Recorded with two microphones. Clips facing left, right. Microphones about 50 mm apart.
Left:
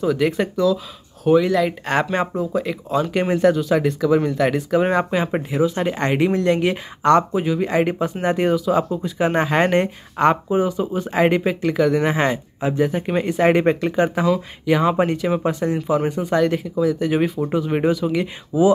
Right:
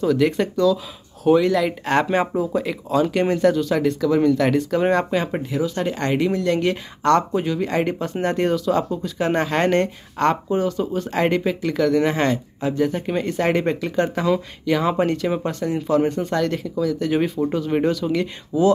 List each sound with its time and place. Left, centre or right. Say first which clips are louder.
0.0 s speech: right 1 dB; centre; by 6.6 s left
6.6 s speech: left 1 dB; centre